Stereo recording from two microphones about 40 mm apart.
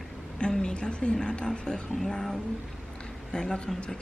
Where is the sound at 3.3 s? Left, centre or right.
Left.